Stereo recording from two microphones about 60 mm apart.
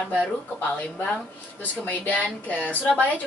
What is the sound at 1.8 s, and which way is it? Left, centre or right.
A woman's voice, left.